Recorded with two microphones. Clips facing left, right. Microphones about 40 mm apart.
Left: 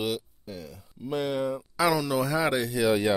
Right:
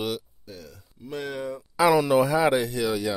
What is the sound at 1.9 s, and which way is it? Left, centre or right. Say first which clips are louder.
Speech: right 7 dB; right.